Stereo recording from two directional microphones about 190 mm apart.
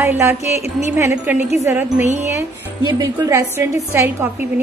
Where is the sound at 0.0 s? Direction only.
10° right (ahead or behind).